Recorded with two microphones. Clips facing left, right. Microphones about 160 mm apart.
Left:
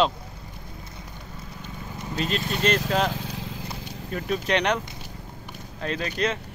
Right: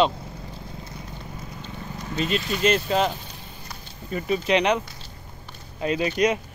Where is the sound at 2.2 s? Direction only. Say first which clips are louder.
Right 2 dB; 5° right (ahead or behind).